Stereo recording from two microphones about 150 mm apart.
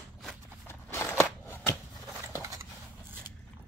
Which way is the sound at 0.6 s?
15° left (ahead or behind).